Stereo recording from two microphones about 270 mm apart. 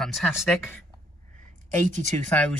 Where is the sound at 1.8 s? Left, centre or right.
Right.